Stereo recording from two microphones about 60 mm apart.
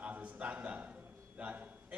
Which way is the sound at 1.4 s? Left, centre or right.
Right.